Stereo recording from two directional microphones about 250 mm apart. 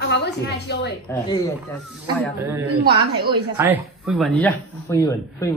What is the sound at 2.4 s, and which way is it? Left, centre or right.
A man's voice, centre.